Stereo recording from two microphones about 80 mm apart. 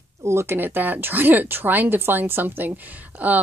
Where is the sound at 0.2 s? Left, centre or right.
Right.